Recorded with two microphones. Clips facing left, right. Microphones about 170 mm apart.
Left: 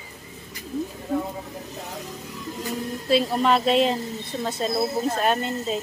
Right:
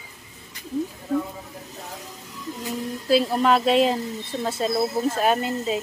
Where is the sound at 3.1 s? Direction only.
Centre (ahead or behind).